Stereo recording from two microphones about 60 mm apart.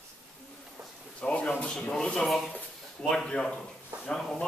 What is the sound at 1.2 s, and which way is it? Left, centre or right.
A man's voice, centre.